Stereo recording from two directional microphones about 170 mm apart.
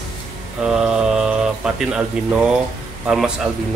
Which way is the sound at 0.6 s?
5° right (ahead or behind).